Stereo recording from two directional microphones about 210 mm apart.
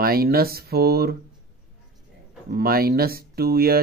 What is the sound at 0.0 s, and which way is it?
Speech, 45° right (ahead or behind).